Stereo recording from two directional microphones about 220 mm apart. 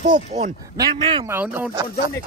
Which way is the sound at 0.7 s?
20° right (ahead or behind).